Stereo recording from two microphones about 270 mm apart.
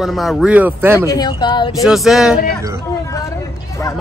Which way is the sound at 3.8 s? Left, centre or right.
Centre.